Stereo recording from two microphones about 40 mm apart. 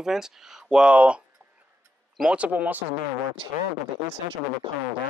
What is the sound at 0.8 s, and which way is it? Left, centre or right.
Speech, right.